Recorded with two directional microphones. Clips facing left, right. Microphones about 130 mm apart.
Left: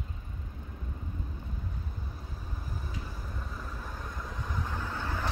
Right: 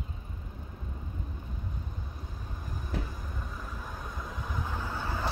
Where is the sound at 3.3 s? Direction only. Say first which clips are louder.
Even; centre (ahead or behind).